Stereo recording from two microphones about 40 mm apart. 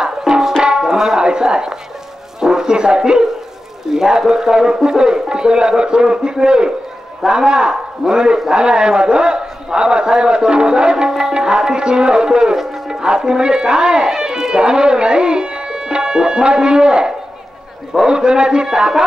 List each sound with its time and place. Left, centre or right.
0.0 s music: centre
2.4 s speech: centre
3.9 s a man's voice: centre